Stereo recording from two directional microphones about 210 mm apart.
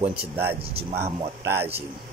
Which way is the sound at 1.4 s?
10° right (ahead or behind).